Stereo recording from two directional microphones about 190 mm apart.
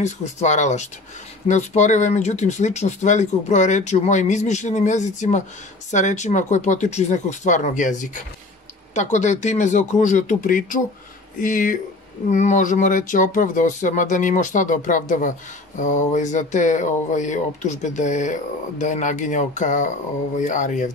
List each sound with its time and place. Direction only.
0.0 s speech: 40° left (ahead or behind)